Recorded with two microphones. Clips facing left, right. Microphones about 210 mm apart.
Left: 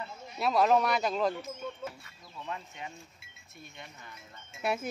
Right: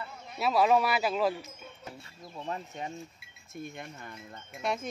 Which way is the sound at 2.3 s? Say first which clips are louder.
Right 4 dB; 35° right (ahead or behind).